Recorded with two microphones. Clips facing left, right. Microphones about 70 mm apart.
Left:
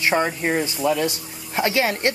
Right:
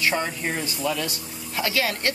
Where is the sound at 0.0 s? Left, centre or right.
Left.